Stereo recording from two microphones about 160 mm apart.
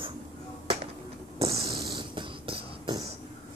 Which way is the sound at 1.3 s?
35° right (ahead or behind).